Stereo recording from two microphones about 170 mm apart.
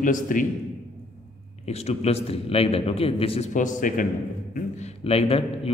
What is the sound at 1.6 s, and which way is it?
A man's voice, 40° left (ahead or behind).